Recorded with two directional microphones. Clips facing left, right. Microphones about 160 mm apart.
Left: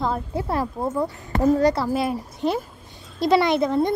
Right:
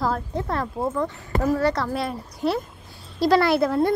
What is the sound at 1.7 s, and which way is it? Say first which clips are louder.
Speech: left 3 dB; 5° left (ahead or behind).